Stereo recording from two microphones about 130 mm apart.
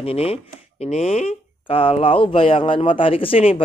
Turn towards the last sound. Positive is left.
turn(degrees=45)  # may be behind; listen again after turning